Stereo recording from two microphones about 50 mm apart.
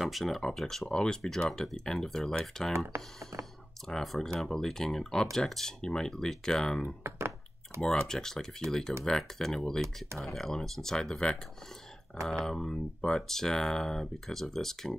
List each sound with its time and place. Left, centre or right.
0.0 s speech: centre
7.0 s a sound: right
7.8 s speech: centre
12.4 s speech: centre